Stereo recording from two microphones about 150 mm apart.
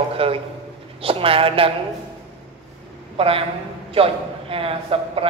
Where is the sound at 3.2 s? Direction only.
40° right (ahead or behind).